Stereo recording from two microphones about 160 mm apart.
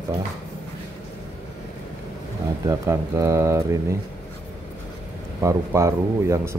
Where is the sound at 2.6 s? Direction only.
20° right (ahead or behind).